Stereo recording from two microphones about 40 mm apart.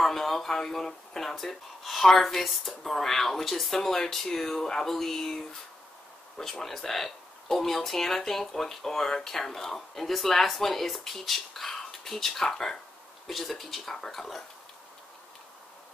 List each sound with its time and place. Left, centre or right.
0.0 s speech: centre